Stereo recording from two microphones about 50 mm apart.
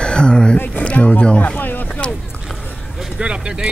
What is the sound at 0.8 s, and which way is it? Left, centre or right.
Speech, left.